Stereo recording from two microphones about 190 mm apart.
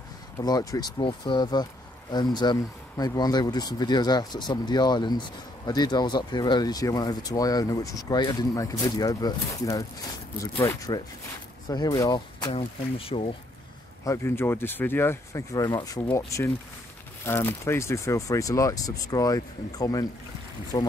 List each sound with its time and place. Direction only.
0.4 s speech: 20° left (ahead or behind)
12.5 s speech: 30° left (ahead or behind)
14.0 s speech: 15° left (ahead or behind)